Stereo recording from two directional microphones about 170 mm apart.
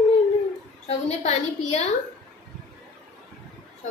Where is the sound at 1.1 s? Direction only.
40° left (ahead or behind).